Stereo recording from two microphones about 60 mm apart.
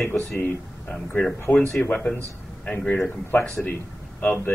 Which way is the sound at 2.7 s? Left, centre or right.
Left.